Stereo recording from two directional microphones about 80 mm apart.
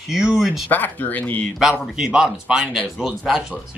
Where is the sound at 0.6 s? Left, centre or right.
Left.